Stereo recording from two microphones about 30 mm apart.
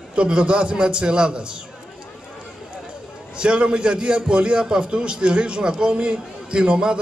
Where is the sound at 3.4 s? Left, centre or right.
Right.